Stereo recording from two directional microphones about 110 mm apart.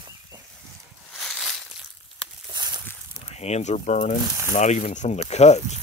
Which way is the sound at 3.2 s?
85° left.